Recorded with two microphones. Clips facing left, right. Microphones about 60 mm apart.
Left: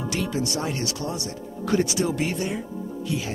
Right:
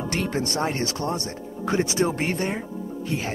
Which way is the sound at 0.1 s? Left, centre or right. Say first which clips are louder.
Right 1 dB; right.